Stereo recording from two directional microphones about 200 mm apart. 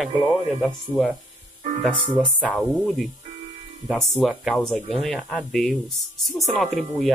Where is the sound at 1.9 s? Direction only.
25° right (ahead or behind).